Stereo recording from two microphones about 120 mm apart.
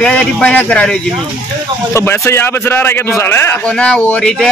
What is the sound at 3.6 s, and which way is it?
Speech, 5° left (ahead or behind).